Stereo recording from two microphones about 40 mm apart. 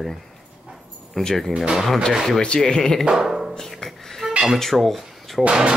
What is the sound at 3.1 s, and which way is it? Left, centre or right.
Speech, centre.